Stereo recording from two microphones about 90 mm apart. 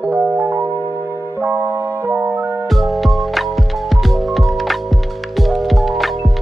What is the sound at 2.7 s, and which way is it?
Music, centre (ahead or behind).